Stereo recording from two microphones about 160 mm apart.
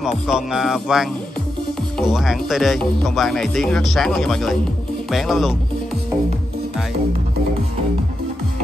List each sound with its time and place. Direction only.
0.0 s speech: 5° right (ahead or behind)